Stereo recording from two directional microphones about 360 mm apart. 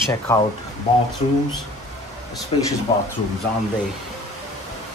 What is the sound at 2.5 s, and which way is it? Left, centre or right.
Speech, centre.